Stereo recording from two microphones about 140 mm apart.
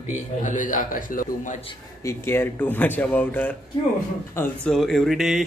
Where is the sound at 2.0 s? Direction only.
15° left (ahead or behind).